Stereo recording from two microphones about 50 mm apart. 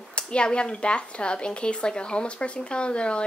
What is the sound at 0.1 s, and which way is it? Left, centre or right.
Speech, centre.